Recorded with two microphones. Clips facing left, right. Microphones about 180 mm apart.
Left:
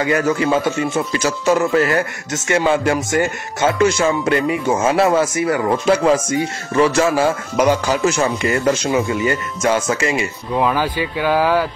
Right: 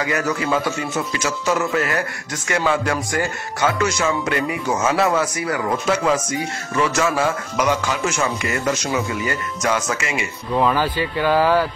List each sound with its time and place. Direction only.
0.0 s a man's voice: 25° left (ahead or behind)
10.5 s speech: 15° left (ahead or behind)